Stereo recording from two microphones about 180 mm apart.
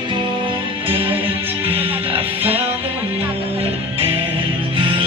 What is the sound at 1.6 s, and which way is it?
Music, 30° right (ahead or behind).